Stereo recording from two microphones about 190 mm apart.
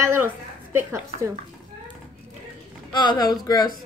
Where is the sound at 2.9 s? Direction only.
25° left (ahead or behind).